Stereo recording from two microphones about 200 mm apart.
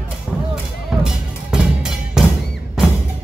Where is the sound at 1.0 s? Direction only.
5° right (ahead or behind).